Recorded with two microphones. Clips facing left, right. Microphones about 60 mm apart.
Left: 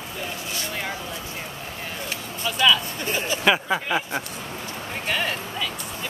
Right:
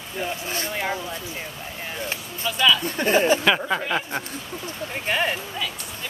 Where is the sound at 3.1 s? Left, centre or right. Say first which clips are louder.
Right 9 dB; right.